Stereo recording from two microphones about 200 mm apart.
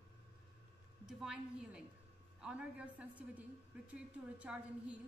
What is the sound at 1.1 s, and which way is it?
A woman's voice, centre (ahead or behind).